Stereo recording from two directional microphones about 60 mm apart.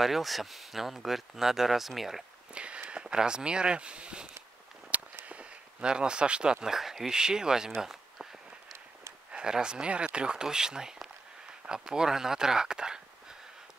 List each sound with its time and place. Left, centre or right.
0.0 s speech: centre
2.5 s speech: centre
7.8 s a sound: centre
9.3 s speech: centre